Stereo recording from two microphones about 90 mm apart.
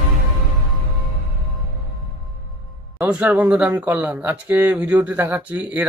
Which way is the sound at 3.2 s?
20° right (ahead or behind).